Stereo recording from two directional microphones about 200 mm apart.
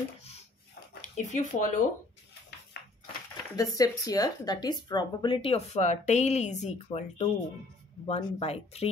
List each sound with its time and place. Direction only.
1.1 s speech: 35° left (ahead or behind)
2.8 s crushing: 60° left (ahead or behind)
3.5 s speech: 15° left (ahead or behind)